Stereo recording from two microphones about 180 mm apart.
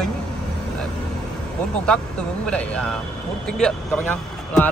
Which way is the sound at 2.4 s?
5° left (ahead or behind).